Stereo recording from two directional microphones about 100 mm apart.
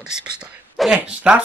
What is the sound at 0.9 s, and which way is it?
Speech, 10° right (ahead or behind).